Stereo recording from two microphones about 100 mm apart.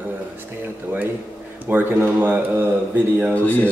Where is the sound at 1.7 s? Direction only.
20° right (ahead or behind).